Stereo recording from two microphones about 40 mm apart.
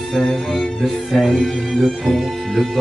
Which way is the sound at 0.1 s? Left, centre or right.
Centre.